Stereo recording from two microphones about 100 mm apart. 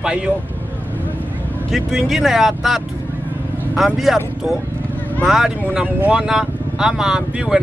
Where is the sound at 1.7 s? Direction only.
5° right (ahead or behind).